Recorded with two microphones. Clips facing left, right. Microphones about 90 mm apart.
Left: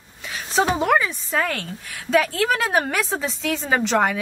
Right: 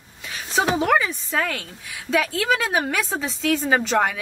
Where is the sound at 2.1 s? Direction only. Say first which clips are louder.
Left 3 dB; 35° left (ahead or behind).